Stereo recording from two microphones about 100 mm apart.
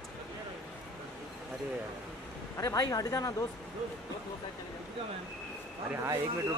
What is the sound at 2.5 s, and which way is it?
Speech, 35° left (ahead or behind).